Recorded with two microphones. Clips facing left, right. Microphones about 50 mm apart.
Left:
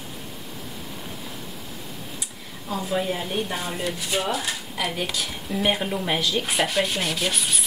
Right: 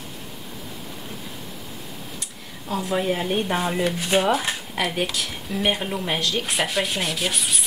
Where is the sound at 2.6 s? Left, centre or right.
Centre.